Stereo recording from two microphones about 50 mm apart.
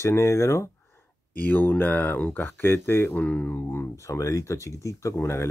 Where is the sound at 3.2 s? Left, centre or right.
Left.